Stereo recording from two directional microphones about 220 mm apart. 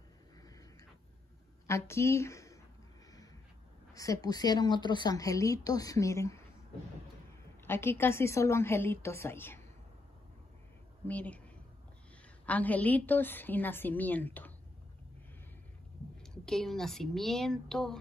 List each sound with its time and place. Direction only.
1.7 s speech: 10° left (ahead or behind)
3.9 s a woman's voice: 15° left (ahead or behind)
7.6 s a woman's voice: 10° left (ahead or behind)
11.1 s a woman's voice: 5° left (ahead or behind)
12.4 s a woman's voice: 5° left (ahead or behind)
16.2 s a woman's voice: centre (ahead or behind)